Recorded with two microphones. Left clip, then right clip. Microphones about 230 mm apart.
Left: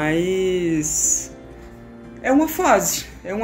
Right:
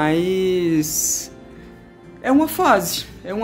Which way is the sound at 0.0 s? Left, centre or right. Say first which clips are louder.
Right 1 dB; right.